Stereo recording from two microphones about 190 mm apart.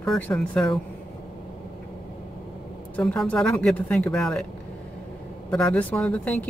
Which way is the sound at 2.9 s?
5° left (ahead or behind).